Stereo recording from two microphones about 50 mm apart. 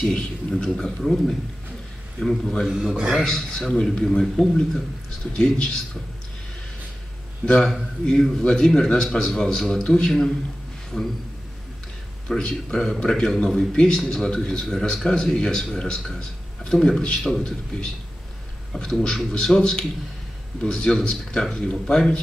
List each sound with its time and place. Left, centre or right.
0.0 s a man's voice: centre
2.6 s a man's voice: centre
3.3 s a man's voice: centre
7.4 s a man's voice: centre
12.4 s a man's voice: centre
18.7 s a man's voice: centre